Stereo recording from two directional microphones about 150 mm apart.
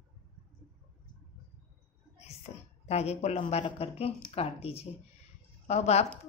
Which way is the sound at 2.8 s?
45° left (ahead or behind).